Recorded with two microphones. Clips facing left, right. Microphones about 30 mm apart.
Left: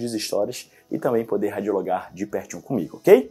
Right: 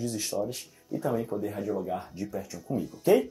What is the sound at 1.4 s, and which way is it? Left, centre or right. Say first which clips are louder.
Speech: left 8 dB; left.